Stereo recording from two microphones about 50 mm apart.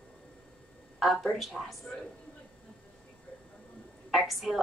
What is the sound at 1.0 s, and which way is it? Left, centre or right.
Speech, centre.